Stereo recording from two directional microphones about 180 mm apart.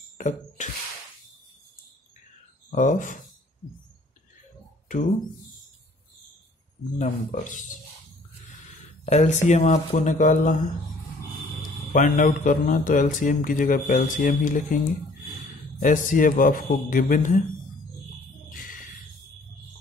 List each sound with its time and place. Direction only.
0.2 s a sound: 45° left (ahead or behind)
2.7 s speech: 45° left (ahead or behind)
7.0 s speech: 45° left (ahead or behind)
9.0 s speech: 40° left (ahead or behind)
11.9 s speech: 50° left (ahead or behind)
18.5 s a sound: 50° left (ahead or behind)